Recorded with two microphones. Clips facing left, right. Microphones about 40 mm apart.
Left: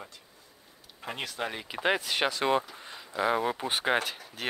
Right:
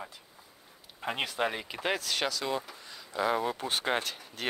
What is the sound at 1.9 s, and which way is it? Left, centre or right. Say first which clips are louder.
Speech: left 3 dB; left.